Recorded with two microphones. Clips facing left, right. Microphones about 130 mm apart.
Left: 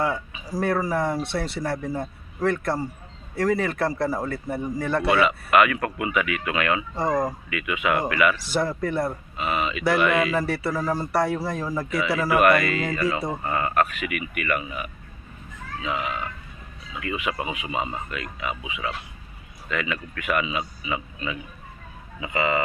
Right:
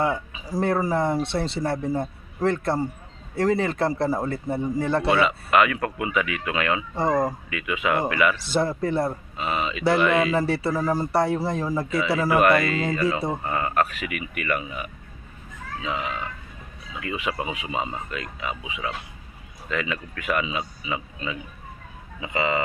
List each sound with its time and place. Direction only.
0.0 s a man's voice: 25° right (ahead or behind)
15.8 s a man's voice: 30° right (ahead or behind)